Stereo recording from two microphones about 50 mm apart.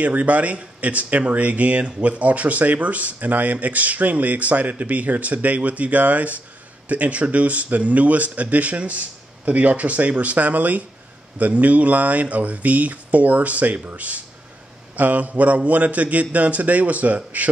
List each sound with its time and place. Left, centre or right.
0.0 s speech: right